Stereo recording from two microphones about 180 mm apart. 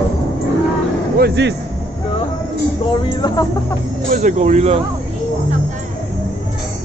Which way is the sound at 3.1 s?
20° left (ahead or behind).